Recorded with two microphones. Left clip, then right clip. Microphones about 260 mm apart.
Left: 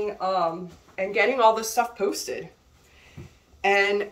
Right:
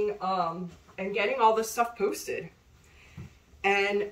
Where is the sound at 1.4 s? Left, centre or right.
Centre.